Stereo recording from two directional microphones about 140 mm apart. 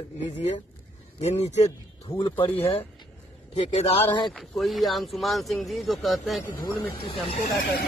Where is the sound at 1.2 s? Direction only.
50° left (ahead or behind).